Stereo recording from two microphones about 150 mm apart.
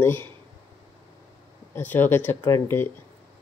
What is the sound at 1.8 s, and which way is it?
Speech, 15° left (ahead or behind).